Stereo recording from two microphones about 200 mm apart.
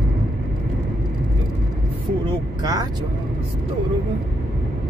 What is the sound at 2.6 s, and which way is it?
Speech, 20° right (ahead or behind).